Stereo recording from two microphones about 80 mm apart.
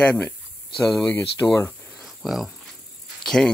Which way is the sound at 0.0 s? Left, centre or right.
Centre.